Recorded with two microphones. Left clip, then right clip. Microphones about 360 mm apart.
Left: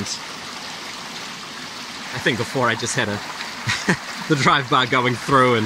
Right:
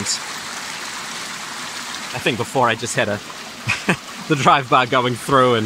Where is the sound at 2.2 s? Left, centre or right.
Centre.